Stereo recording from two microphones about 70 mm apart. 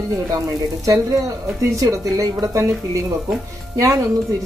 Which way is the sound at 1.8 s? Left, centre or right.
Right.